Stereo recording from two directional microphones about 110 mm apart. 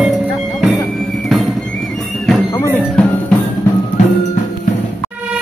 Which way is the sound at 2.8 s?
10° left (ahead or behind).